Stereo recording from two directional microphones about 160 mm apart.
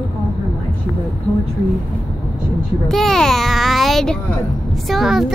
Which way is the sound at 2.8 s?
Centre (ahead or behind).